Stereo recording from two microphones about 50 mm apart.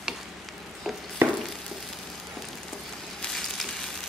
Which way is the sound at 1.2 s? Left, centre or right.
Right.